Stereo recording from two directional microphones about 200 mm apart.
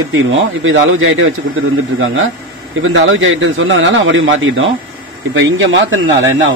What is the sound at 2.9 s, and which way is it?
A man's voice, 75° right (ahead or behind).